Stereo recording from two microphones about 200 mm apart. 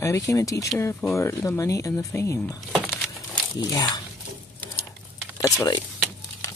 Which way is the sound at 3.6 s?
20° left (ahead or behind).